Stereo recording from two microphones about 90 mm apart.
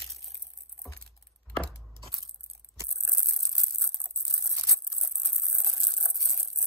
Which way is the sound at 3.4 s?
40° right (ahead or behind).